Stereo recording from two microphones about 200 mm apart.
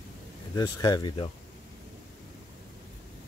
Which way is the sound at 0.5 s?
20° left (ahead or behind).